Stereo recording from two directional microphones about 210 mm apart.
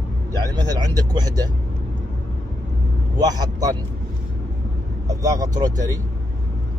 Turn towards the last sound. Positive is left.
turn(degrees=-15)  # may be behind; listen again after turning